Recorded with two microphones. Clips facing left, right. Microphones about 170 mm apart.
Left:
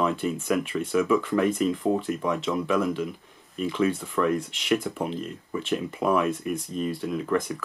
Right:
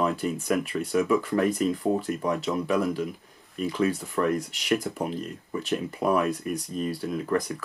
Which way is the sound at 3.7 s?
40° right (ahead or behind).